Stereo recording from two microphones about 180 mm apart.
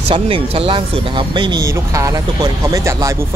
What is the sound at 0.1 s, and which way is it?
Speech, 30° right (ahead or behind).